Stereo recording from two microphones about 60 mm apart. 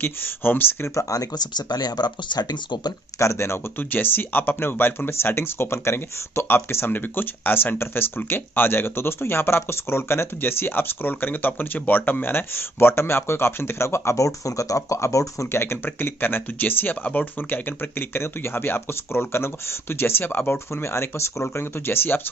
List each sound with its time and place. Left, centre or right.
0.0 s speech: left
3.2 s speech: left
3.9 s speech: left
15.5 s speech: left